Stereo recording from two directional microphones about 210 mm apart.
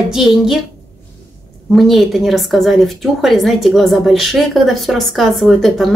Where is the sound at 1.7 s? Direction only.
Centre (ahead or behind).